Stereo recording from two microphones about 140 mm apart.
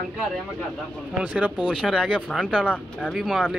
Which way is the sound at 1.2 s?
10° right (ahead or behind).